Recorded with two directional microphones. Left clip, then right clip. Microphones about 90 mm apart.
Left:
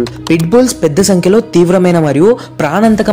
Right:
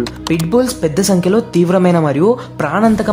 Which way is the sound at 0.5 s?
40° left (ahead or behind).